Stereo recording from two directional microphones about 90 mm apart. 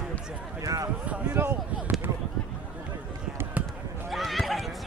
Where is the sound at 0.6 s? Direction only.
40° right (ahead or behind).